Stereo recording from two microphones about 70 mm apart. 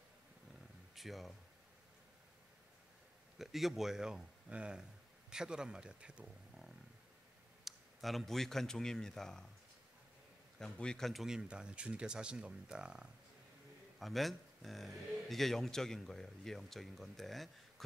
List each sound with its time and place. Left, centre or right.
0.9 s speech: centre
3.3 s speech: centre
7.6 s speech: centre
10.6 s speech: centre
11.2 s speech: centre
13.9 s speech: centre